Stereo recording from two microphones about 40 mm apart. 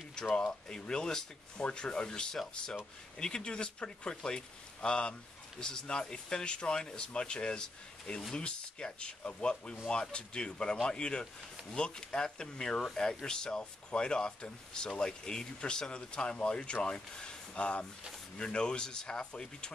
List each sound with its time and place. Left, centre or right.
0.7 s speech: centre